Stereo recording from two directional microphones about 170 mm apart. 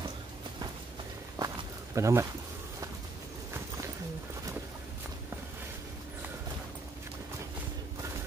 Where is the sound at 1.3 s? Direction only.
20° right (ahead or behind).